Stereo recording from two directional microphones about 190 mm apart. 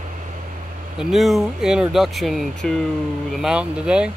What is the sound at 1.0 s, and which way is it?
Speech, centre (ahead or behind).